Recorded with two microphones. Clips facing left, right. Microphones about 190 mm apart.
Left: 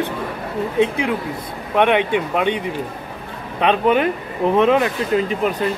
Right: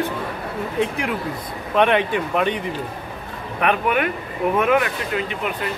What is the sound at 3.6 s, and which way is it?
Speech, 25° left (ahead or behind).